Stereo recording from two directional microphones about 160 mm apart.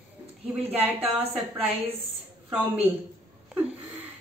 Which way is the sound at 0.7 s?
10° right (ahead or behind).